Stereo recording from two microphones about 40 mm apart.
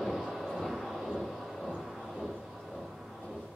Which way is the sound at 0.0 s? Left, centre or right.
Centre.